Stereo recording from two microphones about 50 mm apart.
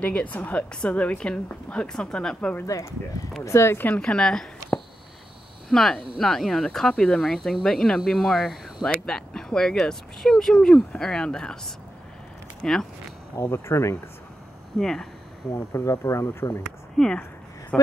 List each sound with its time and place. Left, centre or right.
0.0 s a woman's voice: left
3.4 s speech: left
3.9 s speech: centre
6.9 s speech: centre
13.5 s speech: left
14.8 s speech: centre
15.5 s speech: left
16.9 s speech: centre
17.7 s speech: left